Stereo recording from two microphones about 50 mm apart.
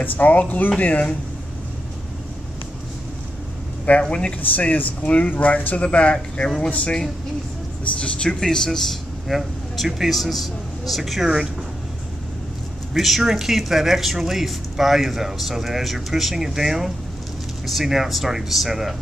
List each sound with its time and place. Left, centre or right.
0.0 s speech: left
4.0 s speech: centre
4.4 s speech: left; by 8.9 s centre
9.3 s speech: centre
12.9 s speech: centre